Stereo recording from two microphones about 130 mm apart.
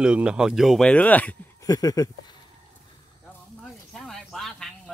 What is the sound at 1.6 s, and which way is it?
Speech, 30° left (ahead or behind).